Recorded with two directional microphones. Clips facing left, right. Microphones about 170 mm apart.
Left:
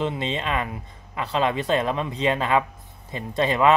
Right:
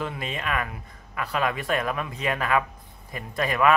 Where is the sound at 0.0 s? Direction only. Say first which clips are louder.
Left 5 dB; 25° left (ahead or behind).